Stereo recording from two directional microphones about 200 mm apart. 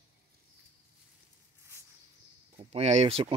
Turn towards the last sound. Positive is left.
turn(degrees=-30)  # may be behind; listen again after turning